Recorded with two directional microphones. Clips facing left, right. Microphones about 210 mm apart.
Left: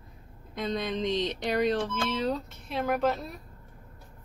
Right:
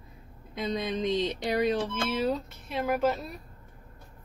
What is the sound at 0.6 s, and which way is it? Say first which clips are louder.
Speech: even; 5° right (ahead or behind).